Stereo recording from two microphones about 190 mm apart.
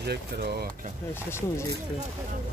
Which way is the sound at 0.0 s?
60° right (ahead or behind).